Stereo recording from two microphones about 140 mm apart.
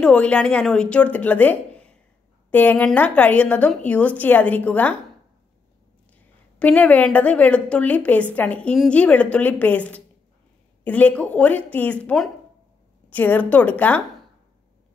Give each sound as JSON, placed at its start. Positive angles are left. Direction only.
{"t": 0.0, "sound": "a woman's voice", "side_deg": 10}
{"t": 6.6, "sound": "a woman's voice", "side_deg": 10}